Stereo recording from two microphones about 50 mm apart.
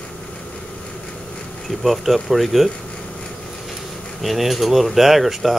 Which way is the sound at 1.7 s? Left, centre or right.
Centre.